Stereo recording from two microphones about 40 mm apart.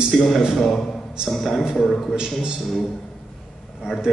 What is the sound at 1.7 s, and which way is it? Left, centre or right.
Speech, centre.